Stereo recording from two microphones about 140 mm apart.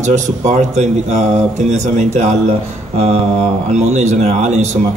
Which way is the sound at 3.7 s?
55° right (ahead or behind).